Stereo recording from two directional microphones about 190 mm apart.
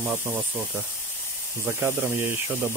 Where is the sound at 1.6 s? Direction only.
10° right (ahead or behind).